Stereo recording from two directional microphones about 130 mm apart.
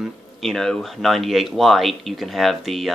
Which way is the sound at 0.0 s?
Centre (ahead or behind).